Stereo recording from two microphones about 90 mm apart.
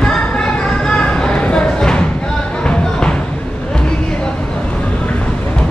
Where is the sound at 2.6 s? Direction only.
10° left (ahead or behind).